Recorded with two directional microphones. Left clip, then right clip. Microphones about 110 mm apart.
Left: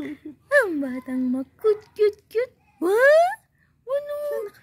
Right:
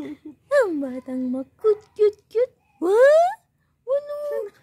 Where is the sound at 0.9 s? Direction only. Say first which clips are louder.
Left 1 dB; 20° right (ahead or behind).